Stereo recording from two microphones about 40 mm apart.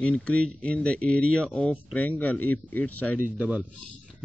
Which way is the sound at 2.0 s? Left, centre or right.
Left.